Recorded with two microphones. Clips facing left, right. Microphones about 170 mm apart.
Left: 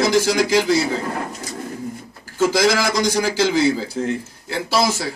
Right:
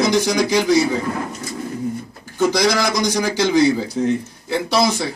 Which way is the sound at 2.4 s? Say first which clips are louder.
Even; 5° left (ahead or behind).